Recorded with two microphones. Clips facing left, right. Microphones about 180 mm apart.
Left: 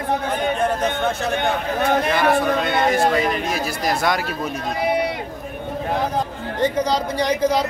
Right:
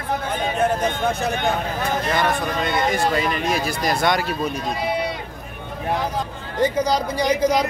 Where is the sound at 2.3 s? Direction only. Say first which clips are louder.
Left 4 dB; 60° left (ahead or behind).